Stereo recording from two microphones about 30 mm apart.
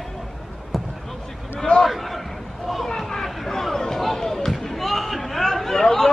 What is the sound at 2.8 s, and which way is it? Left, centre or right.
Chatter, centre.